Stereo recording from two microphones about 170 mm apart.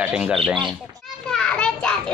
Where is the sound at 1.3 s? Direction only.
5° left (ahead or behind).